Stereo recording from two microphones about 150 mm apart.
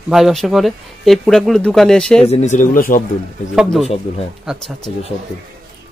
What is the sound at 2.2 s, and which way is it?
Speech, 50° left (ahead or behind).